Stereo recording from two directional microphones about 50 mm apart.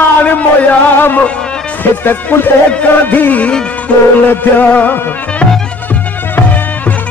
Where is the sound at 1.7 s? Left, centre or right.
Left.